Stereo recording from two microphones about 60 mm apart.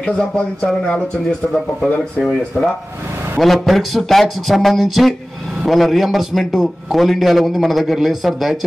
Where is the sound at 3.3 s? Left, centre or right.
Centre.